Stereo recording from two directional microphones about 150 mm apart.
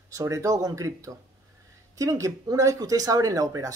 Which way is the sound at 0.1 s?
20° right (ahead or behind).